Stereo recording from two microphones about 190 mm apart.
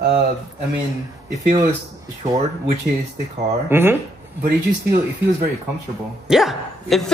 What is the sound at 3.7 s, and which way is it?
Speech, 10° right (ahead or behind).